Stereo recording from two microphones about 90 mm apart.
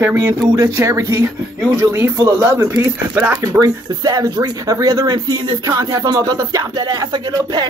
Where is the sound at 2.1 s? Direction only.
40° right (ahead or behind).